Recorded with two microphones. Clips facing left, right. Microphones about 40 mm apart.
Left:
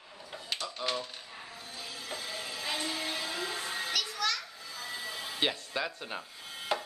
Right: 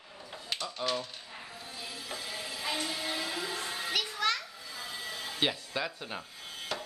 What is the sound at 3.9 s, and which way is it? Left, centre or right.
Children playing, right.